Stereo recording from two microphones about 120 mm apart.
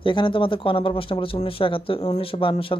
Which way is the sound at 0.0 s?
45° left (ahead or behind).